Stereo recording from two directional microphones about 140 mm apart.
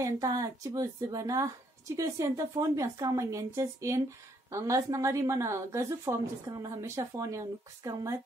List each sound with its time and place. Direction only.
0.0 s a woman's voice: 25° right (ahead or behind)